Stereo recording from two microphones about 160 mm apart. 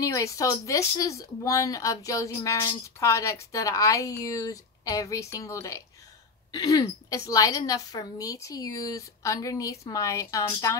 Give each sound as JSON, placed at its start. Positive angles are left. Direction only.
{"t": 0.0, "sound": "a woman's voice", "side_deg": 20}